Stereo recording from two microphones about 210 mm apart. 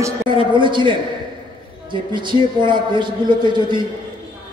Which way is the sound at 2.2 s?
20° right (ahead or behind).